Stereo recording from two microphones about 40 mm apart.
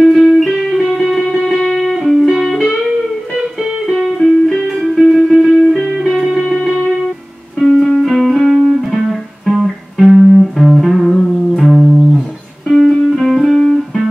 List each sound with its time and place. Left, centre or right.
0.2 s music: centre
0.5 s music: centre
3.9 s music: centre
6.1 s music: centre
7.6 s music: centre
8.0 s music: centre
11.6 s music: centre
12.6 s music: centre